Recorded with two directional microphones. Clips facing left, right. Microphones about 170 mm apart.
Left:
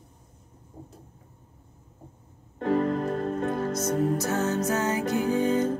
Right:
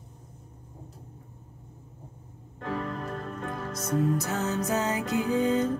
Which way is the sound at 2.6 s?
40° left (ahead or behind).